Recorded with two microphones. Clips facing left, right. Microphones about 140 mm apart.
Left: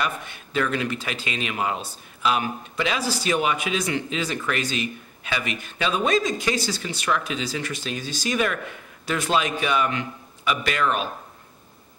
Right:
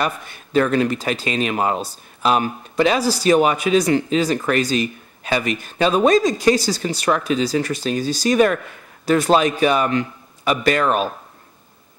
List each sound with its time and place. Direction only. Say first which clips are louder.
0.0 s speech: right 4 dB; 40° right (ahead or behind)